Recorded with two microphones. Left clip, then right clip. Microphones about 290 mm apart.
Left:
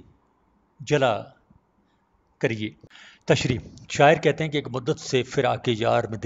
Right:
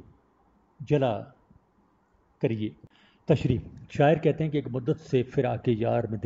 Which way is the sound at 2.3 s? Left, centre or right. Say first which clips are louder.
Left 3 dB; left.